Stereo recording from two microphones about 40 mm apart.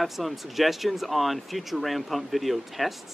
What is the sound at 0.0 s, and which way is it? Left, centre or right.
Speech, centre.